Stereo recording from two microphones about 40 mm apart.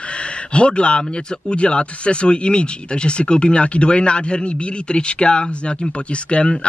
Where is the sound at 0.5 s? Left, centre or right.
Left.